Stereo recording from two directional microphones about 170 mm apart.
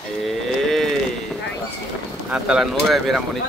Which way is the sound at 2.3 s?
5° right (ahead or behind).